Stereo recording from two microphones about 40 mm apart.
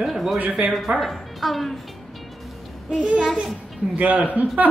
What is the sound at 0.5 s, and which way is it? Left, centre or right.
Speech, right.